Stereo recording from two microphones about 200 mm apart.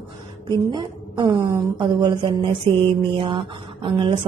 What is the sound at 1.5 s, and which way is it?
Speech, 10° right (ahead or behind).